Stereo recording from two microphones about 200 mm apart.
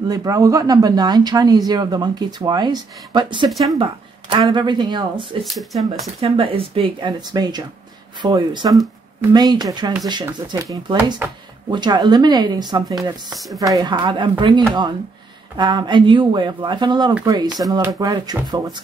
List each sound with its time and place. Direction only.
0.1 s speech: 15° right (ahead or behind)
5.4 s speech: centre (ahead or behind)
5.9 s speech: 25° right (ahead or behind)